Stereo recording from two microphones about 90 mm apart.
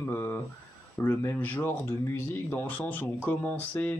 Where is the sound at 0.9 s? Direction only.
25° left (ahead or behind).